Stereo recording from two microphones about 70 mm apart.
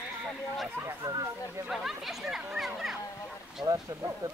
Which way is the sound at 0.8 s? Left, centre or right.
Right.